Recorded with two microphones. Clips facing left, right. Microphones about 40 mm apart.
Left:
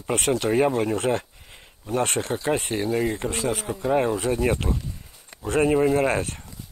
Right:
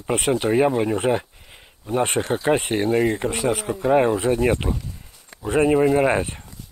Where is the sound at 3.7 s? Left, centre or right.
Centre.